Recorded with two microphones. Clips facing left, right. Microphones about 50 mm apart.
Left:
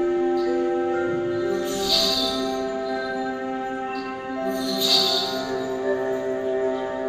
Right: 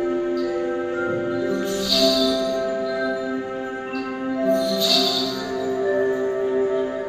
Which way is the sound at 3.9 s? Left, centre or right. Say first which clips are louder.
Right 3 dB; right.